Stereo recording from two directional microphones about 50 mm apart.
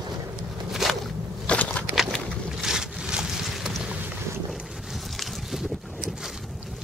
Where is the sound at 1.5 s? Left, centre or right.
Left.